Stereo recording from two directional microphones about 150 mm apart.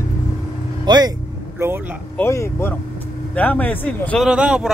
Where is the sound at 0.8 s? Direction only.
30° right (ahead or behind).